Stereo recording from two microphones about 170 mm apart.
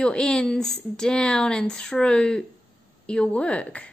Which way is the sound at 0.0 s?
5° left (ahead or behind).